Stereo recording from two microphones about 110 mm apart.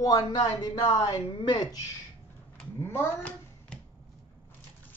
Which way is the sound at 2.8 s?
20° left (ahead or behind).